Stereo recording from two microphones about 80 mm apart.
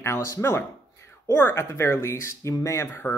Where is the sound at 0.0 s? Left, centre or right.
Left.